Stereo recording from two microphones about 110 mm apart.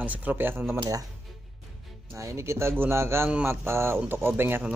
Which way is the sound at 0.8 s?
35° right (ahead or behind).